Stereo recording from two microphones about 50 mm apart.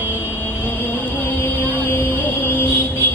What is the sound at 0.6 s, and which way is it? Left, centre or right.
Music, left.